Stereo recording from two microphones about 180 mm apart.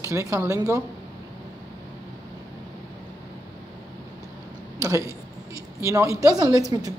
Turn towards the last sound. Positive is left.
turn(degrees=-20)  # may be behind; listen again after turning